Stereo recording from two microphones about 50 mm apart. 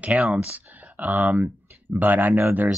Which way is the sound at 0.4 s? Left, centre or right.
Right.